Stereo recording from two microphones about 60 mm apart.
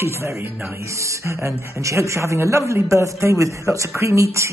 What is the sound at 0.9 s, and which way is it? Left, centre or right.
Speech, right.